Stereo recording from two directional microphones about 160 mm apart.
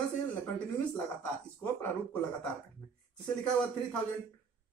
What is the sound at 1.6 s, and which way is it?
Speech, 10° left (ahead or behind).